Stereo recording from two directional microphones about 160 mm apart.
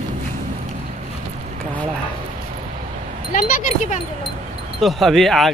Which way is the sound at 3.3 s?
50° left (ahead or behind).